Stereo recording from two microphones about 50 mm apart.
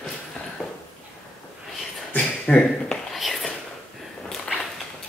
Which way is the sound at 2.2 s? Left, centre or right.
Centre.